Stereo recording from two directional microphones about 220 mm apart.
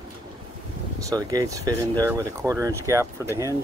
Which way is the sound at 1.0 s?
15° right (ahead or behind).